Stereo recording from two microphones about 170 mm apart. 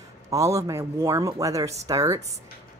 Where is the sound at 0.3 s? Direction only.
20° right (ahead or behind).